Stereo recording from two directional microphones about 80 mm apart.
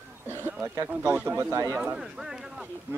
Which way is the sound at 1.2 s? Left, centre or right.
Right.